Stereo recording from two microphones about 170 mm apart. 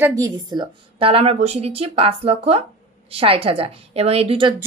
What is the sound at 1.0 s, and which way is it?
Speech, 35° right (ahead or behind).